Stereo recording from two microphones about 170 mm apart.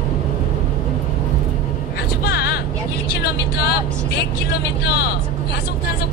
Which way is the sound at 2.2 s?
75° left (ahead or behind).